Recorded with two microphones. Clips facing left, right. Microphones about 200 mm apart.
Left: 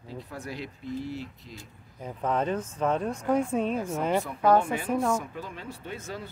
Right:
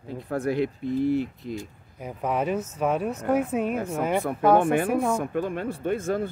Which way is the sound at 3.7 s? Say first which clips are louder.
Right 2 dB; 55° right (ahead or behind).